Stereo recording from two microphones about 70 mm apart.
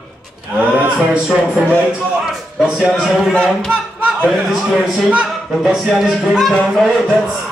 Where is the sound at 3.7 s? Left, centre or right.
Right.